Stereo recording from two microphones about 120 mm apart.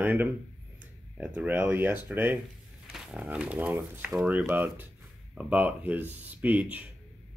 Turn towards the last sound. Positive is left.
turn(degrees=-10)  # may be behind; listen again after turning